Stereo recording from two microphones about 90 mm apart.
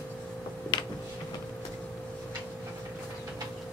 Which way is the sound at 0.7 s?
55° left (ahead or behind).